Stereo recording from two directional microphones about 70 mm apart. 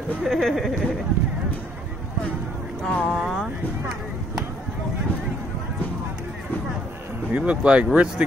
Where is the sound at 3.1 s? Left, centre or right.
Centre.